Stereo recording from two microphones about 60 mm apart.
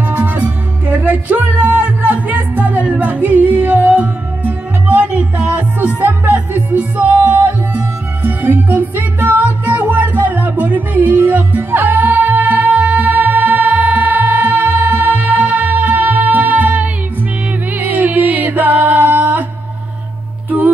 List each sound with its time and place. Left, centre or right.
0.0 s music: right
20.4 s music: right